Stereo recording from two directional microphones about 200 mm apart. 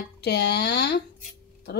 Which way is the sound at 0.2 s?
55° left (ahead or behind).